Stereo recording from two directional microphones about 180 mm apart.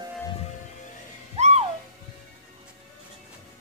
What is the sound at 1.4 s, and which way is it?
Music, 35° right (ahead or behind).